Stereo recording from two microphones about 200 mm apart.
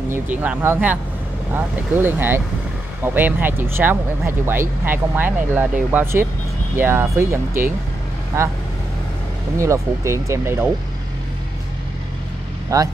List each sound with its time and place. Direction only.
0.1 s speech: 10° right (ahead or behind)
9.6 s speech: 15° right (ahead or behind)
12.6 s speech: 15° right (ahead or behind)